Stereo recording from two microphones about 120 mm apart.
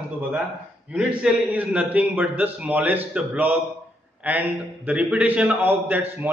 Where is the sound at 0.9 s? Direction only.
10° right (ahead or behind).